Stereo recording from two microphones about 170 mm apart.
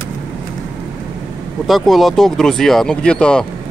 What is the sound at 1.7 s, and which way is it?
Speech, centre (ahead or behind).